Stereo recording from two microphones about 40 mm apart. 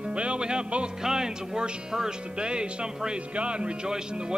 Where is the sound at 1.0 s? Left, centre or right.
Centre.